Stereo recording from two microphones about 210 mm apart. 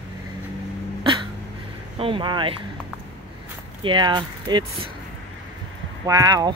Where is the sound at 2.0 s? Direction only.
25° right (ahead or behind).